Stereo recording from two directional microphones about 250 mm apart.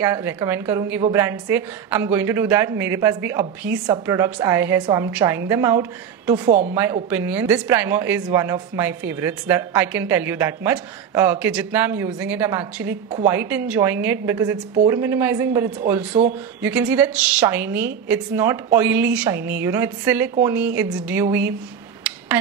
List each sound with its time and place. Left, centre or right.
0.0 s speech: centre